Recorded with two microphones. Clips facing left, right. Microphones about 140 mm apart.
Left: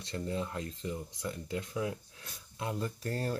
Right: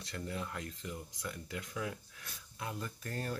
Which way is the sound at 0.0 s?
25° left (ahead or behind).